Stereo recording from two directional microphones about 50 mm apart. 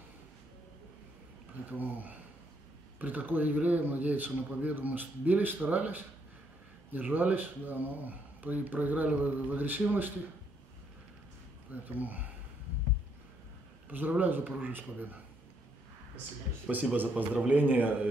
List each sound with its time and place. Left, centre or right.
1.7 s speech: right
11.7 s speech: right
13.8 s speech: right
16.7 s speech: right